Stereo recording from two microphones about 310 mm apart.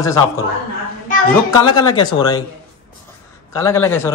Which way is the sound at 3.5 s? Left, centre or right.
Centre.